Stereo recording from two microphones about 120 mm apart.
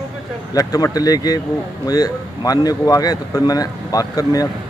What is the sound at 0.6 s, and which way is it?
Speech, 30° left (ahead or behind).